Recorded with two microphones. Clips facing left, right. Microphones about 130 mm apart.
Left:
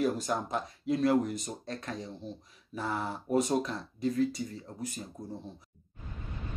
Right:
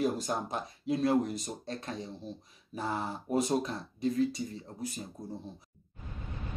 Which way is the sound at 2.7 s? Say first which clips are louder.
Even; 40° right (ahead or behind).